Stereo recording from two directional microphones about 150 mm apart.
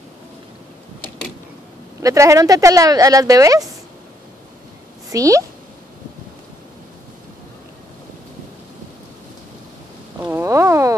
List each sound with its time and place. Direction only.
2.0 s speech: 20° right (ahead or behind)
5.1 s speech: 20° right (ahead or behind)
10.2 s a sound: 15° right (ahead or behind)